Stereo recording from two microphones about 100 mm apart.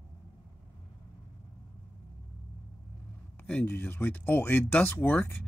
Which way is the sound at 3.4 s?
20° left (ahead or behind).